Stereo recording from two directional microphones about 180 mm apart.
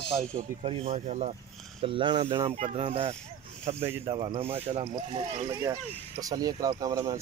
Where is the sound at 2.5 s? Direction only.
35° right (ahead or behind).